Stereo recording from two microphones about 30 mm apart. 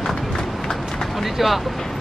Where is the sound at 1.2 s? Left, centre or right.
Centre.